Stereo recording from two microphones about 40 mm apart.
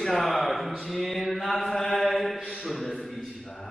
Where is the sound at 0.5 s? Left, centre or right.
Centre.